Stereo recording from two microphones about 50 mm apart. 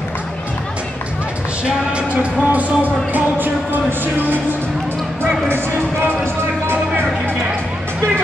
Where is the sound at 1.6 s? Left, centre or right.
Right.